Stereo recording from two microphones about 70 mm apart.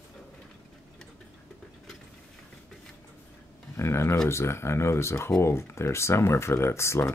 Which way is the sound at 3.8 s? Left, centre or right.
Left.